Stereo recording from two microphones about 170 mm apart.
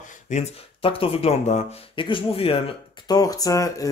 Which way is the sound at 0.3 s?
35° left (ahead or behind).